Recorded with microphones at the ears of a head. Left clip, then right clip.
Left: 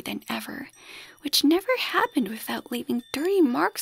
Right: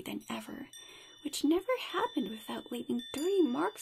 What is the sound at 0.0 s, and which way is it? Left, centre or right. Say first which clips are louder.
Speech: left 9 dB; left.